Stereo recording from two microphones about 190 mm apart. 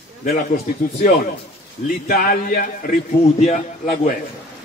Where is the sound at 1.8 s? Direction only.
45° left (ahead or behind).